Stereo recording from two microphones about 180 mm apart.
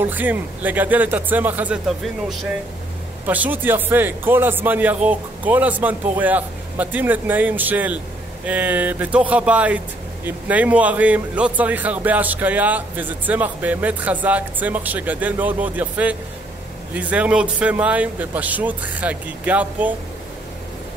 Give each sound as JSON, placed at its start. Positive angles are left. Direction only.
{"t": 0.0, "sound": "a man's voice", "side_deg": -10}